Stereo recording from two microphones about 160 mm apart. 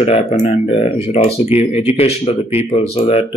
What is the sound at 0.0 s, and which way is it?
Speech, 40° left (ahead or behind).